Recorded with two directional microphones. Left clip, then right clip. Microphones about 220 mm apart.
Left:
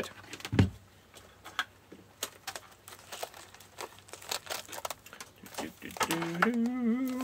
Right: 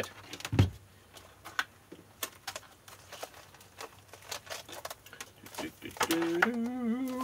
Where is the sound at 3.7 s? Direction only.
55° left (ahead or behind).